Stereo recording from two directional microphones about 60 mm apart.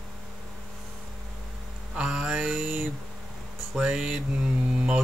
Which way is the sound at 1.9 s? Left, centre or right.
Centre.